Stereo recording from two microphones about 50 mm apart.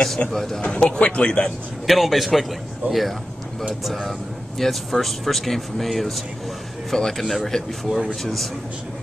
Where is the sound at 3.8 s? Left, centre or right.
Centre.